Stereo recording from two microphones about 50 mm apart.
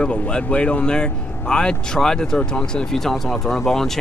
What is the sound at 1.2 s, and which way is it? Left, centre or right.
Speech, left.